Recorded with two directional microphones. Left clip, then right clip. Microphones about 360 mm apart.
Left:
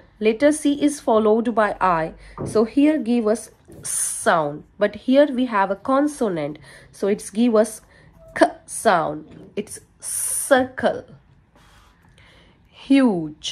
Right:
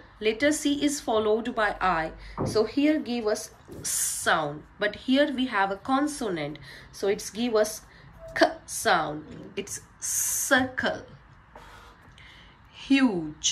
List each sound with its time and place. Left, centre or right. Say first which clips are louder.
0.2 s a woman's voice: left 7 dB; centre
12.7 s speech: left 6 dB; centre